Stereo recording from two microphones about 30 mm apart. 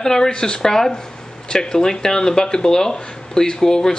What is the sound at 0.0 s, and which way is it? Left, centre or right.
Speech, left.